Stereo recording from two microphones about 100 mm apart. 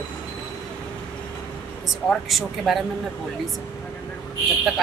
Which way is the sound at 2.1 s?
Centre (ahead or behind).